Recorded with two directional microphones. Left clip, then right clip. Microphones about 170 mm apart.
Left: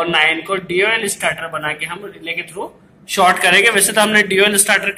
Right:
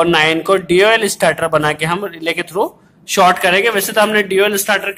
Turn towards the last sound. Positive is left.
turn(degrees=-40)  # may be behind; listen again after turning